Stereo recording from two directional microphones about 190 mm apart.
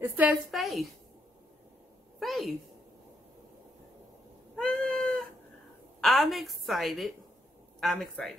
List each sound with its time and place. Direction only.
0.0 s a woman's voice: 10° right (ahead or behind)
2.1 s a woman's voice: centre (ahead or behind)
4.6 s cat: centre (ahead or behind)
5.9 s a woman's voice: centre (ahead or behind)